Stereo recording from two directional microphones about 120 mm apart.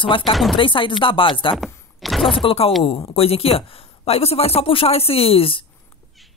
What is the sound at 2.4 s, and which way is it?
Speech, 50° left (ahead or behind).